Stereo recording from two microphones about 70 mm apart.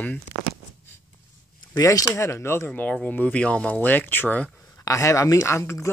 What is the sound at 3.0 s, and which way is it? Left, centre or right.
Speech, left.